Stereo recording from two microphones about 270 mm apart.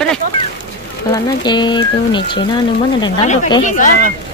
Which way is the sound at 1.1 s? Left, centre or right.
Centre.